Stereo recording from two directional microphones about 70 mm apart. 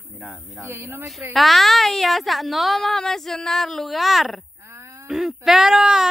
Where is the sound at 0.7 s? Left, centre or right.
Right.